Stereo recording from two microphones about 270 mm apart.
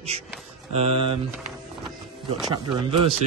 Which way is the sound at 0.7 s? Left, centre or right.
Right.